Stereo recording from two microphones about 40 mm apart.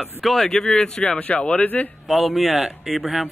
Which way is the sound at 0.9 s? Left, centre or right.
Left.